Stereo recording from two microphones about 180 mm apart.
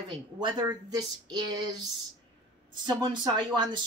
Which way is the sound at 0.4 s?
25° right (ahead or behind).